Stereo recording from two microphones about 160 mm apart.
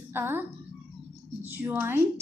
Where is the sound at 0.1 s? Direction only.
15° right (ahead or behind).